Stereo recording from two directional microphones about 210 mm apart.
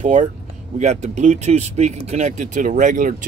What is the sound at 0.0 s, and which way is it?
Speech, 35° right (ahead or behind).